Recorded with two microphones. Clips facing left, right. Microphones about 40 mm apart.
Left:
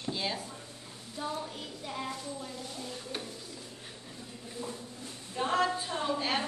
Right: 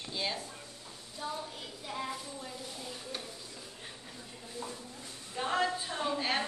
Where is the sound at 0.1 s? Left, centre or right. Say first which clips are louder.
Left 2 dB; centre.